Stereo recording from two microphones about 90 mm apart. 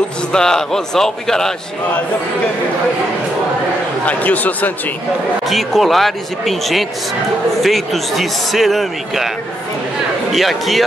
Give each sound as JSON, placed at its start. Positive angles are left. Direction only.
{"t": 0.3, "sound": "a man's voice", "side_deg": 5}
{"t": 4.0, "sound": "speech", "side_deg": 15}
{"t": 5.5, "sound": "a man's voice", "side_deg": 0}
{"t": 10.3, "sound": "a man's voice", "side_deg": 0}